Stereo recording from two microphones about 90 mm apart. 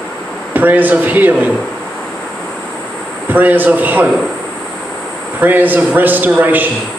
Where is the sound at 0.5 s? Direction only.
20° right (ahead or behind).